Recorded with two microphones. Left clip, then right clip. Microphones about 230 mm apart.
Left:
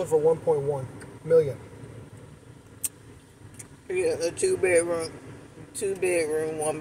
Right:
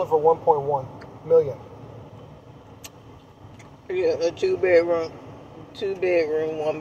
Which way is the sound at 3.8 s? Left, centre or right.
Centre.